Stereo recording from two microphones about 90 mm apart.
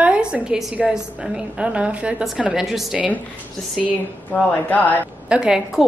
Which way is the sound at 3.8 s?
15° left (ahead or behind).